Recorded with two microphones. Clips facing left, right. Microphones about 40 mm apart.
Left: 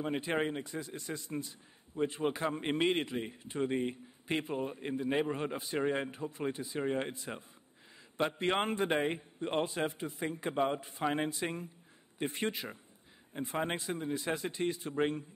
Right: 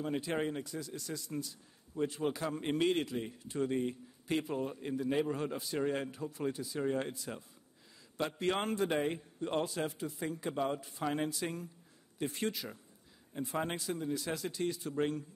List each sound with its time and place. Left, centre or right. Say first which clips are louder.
0.0 s a man's voice: left 2 dB; left